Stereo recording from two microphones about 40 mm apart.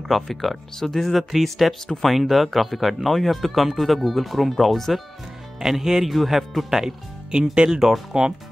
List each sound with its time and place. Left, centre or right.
0.1 s speech: centre
5.6 s speech: centre
7.5 s speech: right